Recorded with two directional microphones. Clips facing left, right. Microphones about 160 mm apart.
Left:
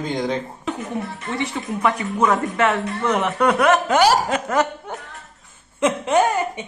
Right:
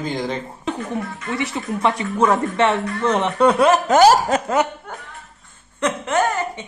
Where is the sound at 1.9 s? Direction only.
30° right (ahead or behind).